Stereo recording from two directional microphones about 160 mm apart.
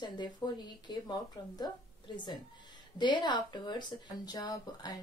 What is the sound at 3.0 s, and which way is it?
A woman's voice, 30° left (ahead or behind).